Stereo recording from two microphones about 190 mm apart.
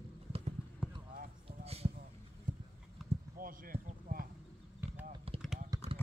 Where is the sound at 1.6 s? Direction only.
30° right (ahead or behind).